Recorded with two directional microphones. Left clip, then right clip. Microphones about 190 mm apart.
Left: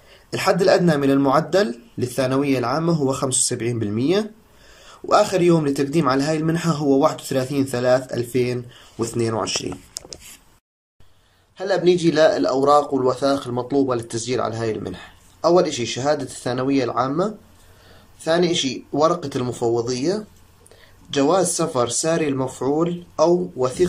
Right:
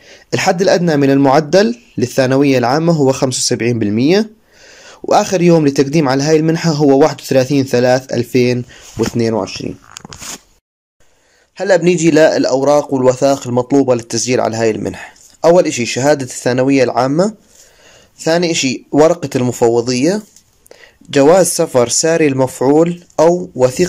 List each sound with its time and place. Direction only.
0.1 s a man's voice: 35° right (ahead or behind)
11.5 s a man's voice: 40° right (ahead or behind)